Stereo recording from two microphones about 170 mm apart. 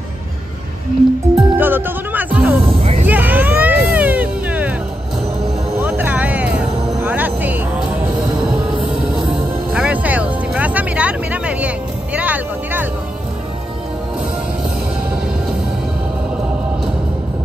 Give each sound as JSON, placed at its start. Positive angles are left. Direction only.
{"t": 1.3, "sound": "music", "side_deg": -10}
{"t": 2.8, "sound": "vehicle", "side_deg": -35}
{"t": 3.1, "sound": "a sound", "side_deg": -10}
{"t": 3.6, "sound": "music", "side_deg": -10}
{"t": 5.8, "sound": "music", "side_deg": -10}
{"t": 9.7, "sound": "music", "side_deg": -10}